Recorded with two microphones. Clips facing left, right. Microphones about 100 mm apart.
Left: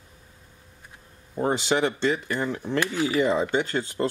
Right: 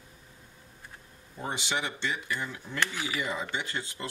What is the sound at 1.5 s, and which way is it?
Speech, 50° left (ahead or behind).